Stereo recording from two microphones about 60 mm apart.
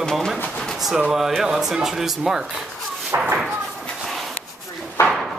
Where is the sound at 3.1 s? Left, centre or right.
Right.